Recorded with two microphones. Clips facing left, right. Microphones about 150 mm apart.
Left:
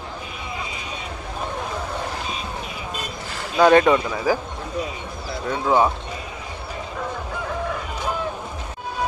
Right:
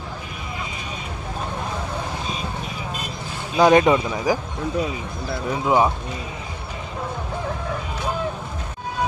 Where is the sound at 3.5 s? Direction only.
15° right (ahead or behind).